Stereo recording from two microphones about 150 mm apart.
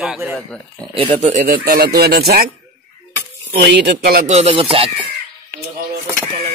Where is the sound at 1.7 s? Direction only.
80° right.